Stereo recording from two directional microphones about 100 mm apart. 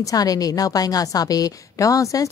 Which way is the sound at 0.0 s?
40° left (ahead or behind).